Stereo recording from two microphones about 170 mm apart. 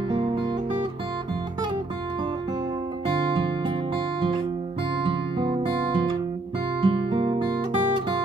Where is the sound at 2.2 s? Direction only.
25° right (ahead or behind).